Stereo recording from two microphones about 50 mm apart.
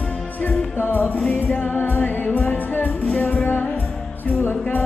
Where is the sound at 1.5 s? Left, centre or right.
Left.